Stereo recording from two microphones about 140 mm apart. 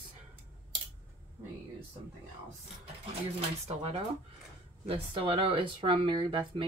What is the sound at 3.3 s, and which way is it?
Speech, 45° right (ahead or behind).